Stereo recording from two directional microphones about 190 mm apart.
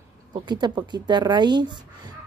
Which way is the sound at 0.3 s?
25° right (ahead or behind).